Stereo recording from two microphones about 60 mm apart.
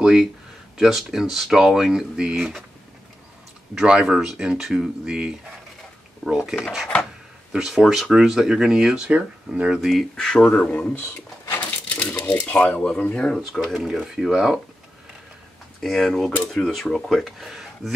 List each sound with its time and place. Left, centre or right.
0.0 s speech: centre
2.3 s speech: centre
3.7 s speech: centre
10.1 s speech: centre
10.7 s speech: left
11.9 s a sound: left
12.3 s speech: left
13.4 s speech: centre
15.8 s speech: centre